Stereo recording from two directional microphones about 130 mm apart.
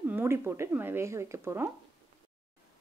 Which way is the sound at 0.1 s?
15° right (ahead or behind).